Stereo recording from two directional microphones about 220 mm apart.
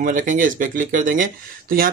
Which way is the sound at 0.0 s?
35° right (ahead or behind).